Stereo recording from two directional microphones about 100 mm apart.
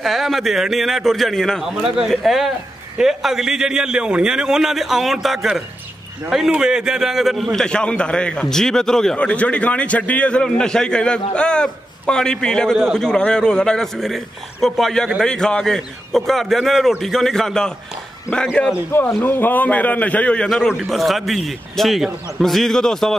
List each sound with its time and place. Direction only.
0.0 s a man's voice: centre (ahead or behind)
7.5 s a man's voice: 10° left (ahead or behind)
18.9 s a man's voice: 20° left (ahead or behind)
20.4 s a man's voice: centre (ahead or behind)